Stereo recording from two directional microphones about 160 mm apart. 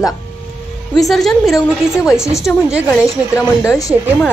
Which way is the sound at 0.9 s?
Centre (ahead or behind).